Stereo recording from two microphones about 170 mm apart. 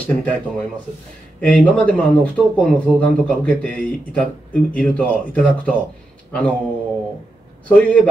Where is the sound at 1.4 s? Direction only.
10° left (ahead or behind).